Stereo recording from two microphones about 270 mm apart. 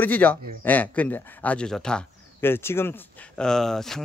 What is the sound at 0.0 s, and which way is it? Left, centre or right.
Speech, centre.